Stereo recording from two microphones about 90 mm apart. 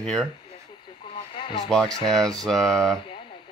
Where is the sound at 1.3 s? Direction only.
65° left (ahead or behind).